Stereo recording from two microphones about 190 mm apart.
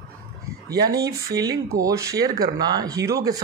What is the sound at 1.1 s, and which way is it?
Speech, 20° right (ahead or behind).